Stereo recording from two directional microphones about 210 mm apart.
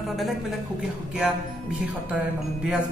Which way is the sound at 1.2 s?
5° right (ahead or behind).